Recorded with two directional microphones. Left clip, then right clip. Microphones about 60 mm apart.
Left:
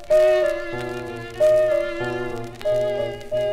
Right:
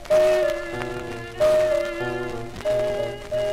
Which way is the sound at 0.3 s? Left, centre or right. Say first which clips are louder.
Left 2 dB; centre.